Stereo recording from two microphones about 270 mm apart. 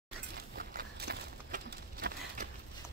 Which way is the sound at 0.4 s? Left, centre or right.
Right.